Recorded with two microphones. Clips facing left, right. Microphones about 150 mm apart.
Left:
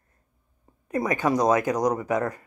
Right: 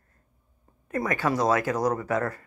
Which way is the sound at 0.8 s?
20° left (ahead or behind).